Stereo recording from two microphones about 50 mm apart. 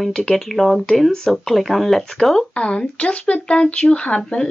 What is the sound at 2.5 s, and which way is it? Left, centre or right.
Speech, left.